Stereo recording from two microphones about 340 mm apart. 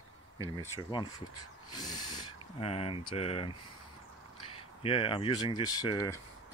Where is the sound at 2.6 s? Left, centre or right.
Centre.